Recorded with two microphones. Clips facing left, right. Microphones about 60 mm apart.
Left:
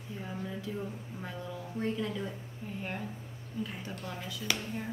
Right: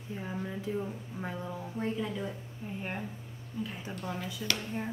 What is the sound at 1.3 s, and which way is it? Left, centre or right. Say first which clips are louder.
Speech: right 3 dB; right.